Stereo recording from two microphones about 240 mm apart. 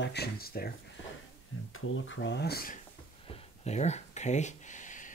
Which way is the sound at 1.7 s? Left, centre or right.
Left.